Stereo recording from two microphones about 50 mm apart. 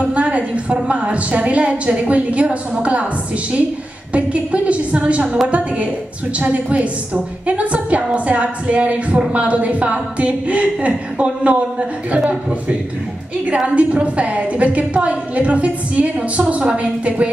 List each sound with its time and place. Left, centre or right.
0.1 s a sound: right
0.7 s a woman's voice: right
4.1 s a woman's voice: right
6.4 s a woman's voice: right